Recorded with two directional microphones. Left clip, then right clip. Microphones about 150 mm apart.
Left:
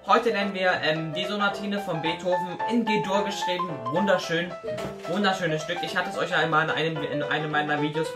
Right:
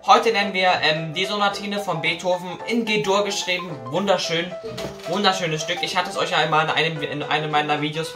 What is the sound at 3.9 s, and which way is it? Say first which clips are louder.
Speech: right 3 dB; 20° right (ahead or behind).